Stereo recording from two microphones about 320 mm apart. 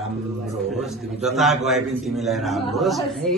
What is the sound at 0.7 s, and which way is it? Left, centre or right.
A man's voice, centre.